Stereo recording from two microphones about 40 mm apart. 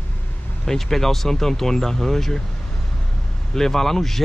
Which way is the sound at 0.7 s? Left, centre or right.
Centre.